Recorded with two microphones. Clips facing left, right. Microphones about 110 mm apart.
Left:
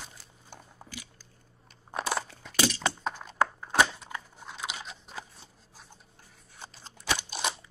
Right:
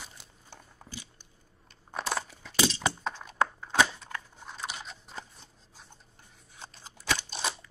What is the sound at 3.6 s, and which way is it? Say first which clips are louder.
Scissors: left 1 dB; 10° left (ahead or behind).